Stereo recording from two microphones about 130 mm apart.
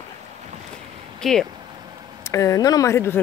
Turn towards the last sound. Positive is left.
turn(degrees=20)  # may be behind; listen again after turning